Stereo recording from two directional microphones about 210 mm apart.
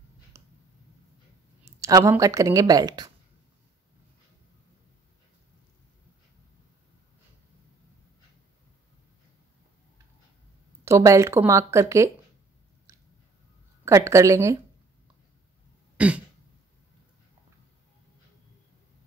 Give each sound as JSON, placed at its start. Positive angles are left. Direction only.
{"t": 0.3, "sound": "a sound", "side_deg": -15}
{"t": 1.8, "sound": "a woman's voice", "side_deg": -15}
{"t": 10.9, "sound": "a woman's voice", "side_deg": -15}
{"t": 13.8, "sound": "a woman's voice", "side_deg": -15}
{"t": 16.0, "sound": "a woman's voice", "side_deg": -5}